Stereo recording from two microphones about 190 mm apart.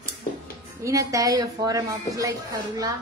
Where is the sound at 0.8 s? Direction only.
15° right (ahead or behind).